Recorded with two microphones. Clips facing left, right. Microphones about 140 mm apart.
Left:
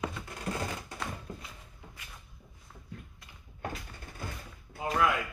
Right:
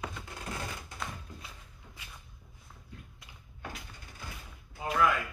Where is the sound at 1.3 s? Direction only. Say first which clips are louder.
Left 6 dB; 50° left (ahead or behind).